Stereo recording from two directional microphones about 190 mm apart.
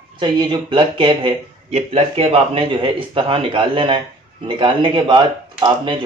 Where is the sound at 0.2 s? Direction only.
25° right (ahead or behind).